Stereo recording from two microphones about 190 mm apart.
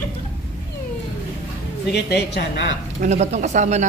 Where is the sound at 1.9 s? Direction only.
60° left (ahead or behind).